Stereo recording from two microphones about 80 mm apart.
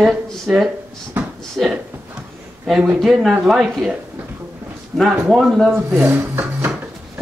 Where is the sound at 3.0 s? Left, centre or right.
Centre.